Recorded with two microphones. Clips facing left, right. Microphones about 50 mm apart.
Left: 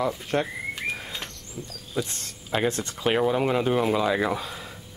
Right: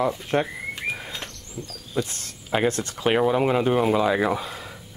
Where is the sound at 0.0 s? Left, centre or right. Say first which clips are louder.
Right 3 dB; centre.